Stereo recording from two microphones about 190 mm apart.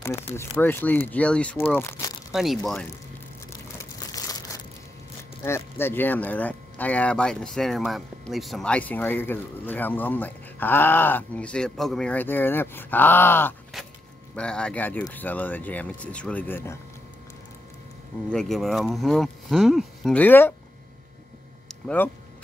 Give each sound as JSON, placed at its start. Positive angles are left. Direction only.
{"t": 0.0, "sound": "speech", "side_deg": 15}
{"t": 2.3, "sound": "speech", "side_deg": 0}
{"t": 3.7, "sound": "crumpling", "side_deg": 20}
{"t": 5.4, "sound": "speech", "side_deg": 10}
{"t": 18.3, "sound": "speech", "side_deg": 0}
{"t": 21.6, "sound": "a sound", "side_deg": 5}